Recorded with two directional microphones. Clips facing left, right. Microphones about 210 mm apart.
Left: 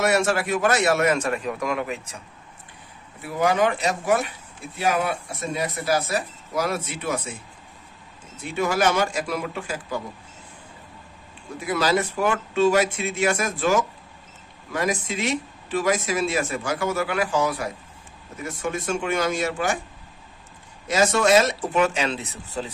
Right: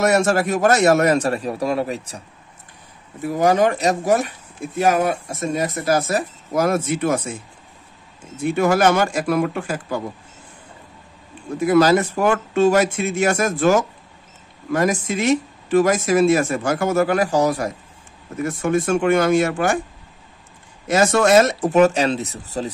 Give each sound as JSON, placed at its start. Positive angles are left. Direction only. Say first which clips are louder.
{"t": 0.0, "sound": "a man's voice", "louder": "right 4 dB", "side_deg": -40}
{"t": 8.5, "sound": "speech", "louder": "right 5 dB", "side_deg": -50}
{"t": 11.6, "sound": "speech", "louder": "right 8 dB", "side_deg": -45}
{"t": 18.4, "sound": "speech", "louder": "right 9 dB", "side_deg": -55}
{"t": 20.9, "sound": "speech", "louder": "right 4 dB", "side_deg": -50}